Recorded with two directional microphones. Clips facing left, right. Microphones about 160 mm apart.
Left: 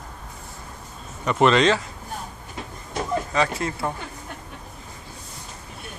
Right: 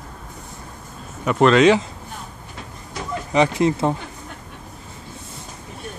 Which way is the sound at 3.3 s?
20° right (ahead or behind).